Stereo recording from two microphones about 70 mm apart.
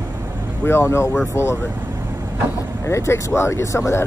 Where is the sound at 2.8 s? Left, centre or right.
Left.